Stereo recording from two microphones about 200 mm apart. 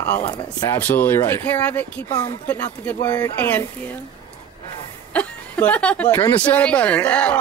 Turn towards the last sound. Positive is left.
turn(degrees=5)  # may be behind; listen again after turning